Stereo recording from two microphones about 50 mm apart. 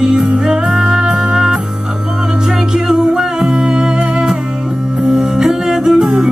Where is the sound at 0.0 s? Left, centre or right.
Centre.